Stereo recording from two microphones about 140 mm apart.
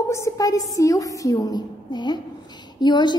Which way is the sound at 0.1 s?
25° left (ahead or behind).